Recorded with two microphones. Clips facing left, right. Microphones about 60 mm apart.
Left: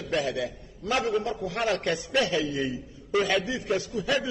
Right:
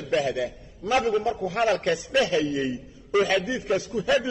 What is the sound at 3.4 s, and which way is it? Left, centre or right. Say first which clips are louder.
Speech: right 2 dB; right.